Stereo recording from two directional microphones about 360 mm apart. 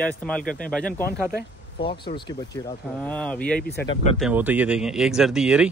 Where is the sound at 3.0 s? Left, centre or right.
Centre.